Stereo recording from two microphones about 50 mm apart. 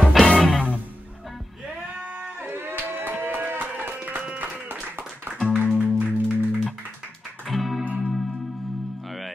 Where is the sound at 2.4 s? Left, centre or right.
Right.